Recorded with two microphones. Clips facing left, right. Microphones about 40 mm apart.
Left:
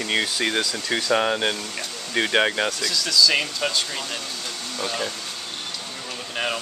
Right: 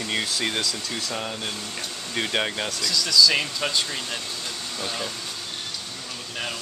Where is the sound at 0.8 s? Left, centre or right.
Left.